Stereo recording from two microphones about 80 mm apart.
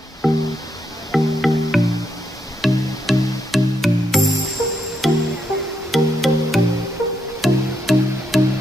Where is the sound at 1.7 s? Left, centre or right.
Left.